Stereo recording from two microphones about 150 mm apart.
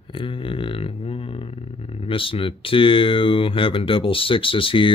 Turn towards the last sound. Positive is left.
turn(degrees=35)  # may be behind; listen again after turning